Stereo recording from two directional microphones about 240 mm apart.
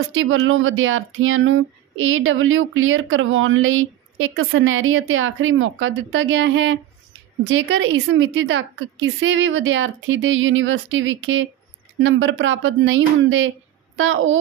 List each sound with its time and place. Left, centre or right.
0.1 s a woman's voice: right